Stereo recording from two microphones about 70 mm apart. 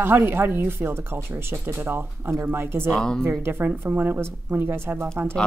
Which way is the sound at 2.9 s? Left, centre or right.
Centre.